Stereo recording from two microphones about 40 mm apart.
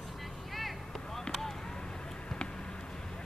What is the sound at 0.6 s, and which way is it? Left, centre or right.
Vehicle, centre.